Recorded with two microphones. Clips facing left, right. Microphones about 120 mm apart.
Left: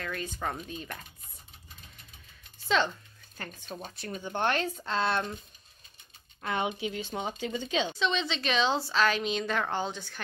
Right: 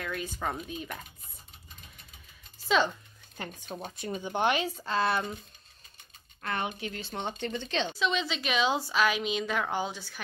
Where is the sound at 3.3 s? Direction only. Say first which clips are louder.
Right 2 dB; 15° right (ahead or behind).